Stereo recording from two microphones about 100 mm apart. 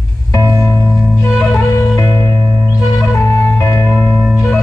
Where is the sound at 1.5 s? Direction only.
30° left (ahead or behind).